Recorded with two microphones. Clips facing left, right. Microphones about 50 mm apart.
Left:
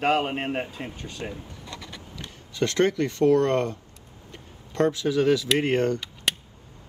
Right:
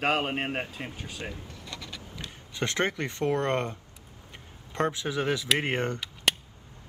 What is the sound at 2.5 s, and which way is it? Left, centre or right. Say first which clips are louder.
Speech: left 6 dB; right.